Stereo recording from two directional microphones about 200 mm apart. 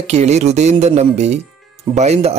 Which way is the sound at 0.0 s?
35° right (ahead or behind).